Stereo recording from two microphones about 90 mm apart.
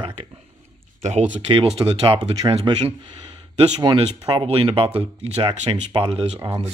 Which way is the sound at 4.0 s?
80° right.